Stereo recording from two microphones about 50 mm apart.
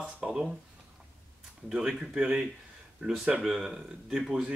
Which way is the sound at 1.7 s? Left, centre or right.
Centre.